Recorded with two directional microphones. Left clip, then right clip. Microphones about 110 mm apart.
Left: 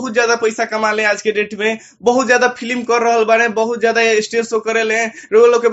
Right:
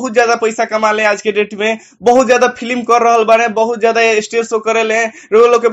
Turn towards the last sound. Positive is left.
turn(degrees=-45)  # may be behind; listen again after turning